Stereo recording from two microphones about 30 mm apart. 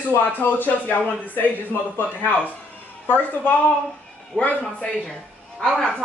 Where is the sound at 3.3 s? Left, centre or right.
Left.